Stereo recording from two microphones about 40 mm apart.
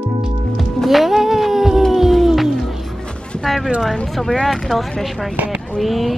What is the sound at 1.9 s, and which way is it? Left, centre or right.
Music, centre.